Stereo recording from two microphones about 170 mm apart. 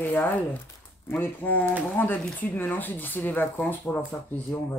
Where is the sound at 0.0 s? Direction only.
10° left (ahead or behind).